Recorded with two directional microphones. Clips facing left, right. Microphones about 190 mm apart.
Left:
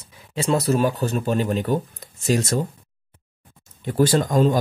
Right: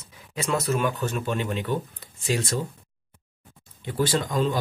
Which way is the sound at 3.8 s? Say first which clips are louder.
Left 6 dB; 45° left (ahead or behind).